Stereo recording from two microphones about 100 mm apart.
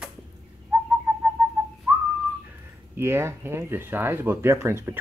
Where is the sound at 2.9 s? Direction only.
25° right (ahead or behind).